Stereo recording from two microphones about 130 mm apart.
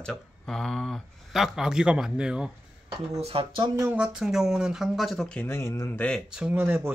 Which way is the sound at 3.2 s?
45° right (ahead or behind).